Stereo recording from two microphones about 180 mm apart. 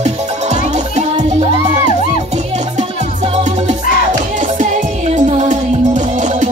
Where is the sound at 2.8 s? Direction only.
40° right (ahead or behind).